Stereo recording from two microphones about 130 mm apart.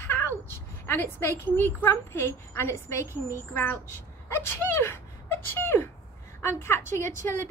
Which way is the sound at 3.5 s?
15° left (ahead or behind).